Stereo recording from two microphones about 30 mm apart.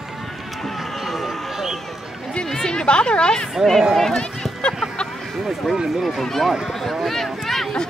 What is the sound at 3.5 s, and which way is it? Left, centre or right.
Speech, centre.